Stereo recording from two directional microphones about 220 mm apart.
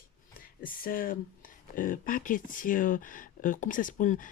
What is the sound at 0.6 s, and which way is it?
Speech, 40° left (ahead or behind).